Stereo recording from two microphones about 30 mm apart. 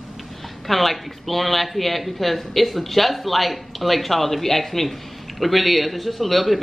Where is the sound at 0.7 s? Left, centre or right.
Centre.